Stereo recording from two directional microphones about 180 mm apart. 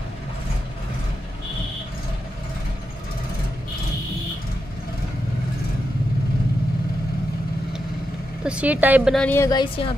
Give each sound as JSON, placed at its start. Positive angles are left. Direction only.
{"t": 8.5, "sound": "speech", "side_deg": -5}
{"t": 9.1, "sound": "a woman's voice", "side_deg": 10}
{"t": 9.5, "sound": "a woman's voice", "side_deg": 25}